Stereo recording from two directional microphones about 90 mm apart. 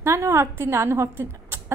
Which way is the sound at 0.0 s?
30° right (ahead or behind).